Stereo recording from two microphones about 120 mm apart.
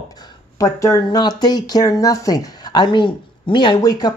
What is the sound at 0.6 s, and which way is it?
Speech, 25° left (ahead or behind).